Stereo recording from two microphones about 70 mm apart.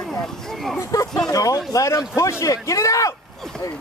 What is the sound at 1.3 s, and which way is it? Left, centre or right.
Speech, left.